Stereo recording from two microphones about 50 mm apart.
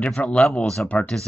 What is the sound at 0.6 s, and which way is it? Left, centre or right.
Speech, centre.